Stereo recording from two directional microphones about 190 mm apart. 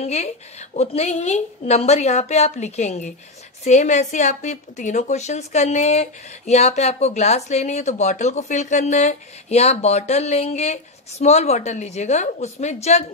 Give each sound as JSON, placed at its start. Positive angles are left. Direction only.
{"t": 0.0, "sound": "a woman's voice", "side_deg": 35}